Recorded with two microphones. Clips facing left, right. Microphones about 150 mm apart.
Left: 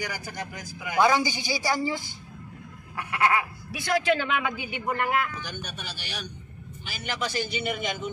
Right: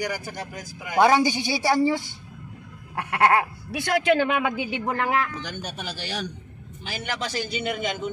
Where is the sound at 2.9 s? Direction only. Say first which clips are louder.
Right 4 dB; 60° right (ahead or behind).